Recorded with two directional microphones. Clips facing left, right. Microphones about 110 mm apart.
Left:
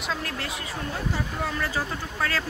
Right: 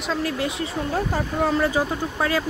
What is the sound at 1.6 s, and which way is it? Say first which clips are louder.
Speech: right 7 dB; 20° right (ahead or behind).